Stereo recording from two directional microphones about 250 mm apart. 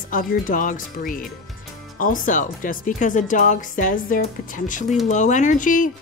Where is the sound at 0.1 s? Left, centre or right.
Left.